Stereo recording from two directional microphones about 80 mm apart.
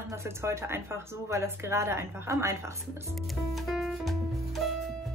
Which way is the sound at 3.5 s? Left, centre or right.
Centre.